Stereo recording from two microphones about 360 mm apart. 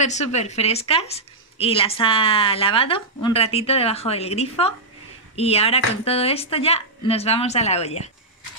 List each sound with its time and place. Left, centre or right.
0.0 s a woman's voice: centre